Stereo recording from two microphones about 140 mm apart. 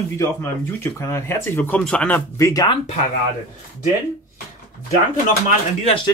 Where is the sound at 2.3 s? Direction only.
20° left (ahead or behind).